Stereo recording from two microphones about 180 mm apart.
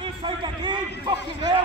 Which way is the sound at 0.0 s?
25° right (ahead or behind).